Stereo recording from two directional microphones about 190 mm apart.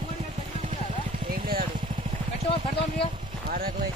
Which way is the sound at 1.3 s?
50° right (ahead or behind).